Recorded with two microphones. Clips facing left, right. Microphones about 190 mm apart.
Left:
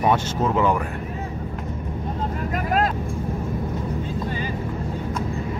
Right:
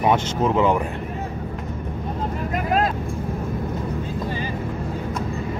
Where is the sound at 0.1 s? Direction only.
20° right (ahead or behind).